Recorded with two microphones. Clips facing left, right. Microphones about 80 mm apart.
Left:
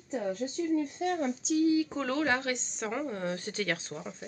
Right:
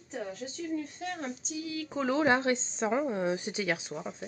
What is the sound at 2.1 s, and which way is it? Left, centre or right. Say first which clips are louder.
A woman's voice: right 6 dB; right.